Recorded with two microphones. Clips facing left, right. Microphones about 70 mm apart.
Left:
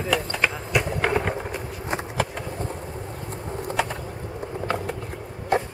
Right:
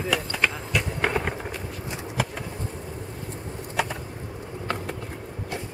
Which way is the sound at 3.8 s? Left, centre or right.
Centre.